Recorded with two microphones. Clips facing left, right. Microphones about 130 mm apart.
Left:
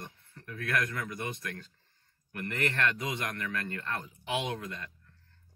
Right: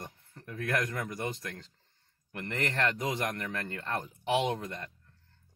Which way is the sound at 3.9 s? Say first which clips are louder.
Right 6 dB; 35° right (ahead or behind).